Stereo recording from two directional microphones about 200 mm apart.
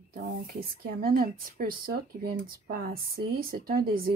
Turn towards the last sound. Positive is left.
turn(degrees=-50)  # may be behind; listen again after turning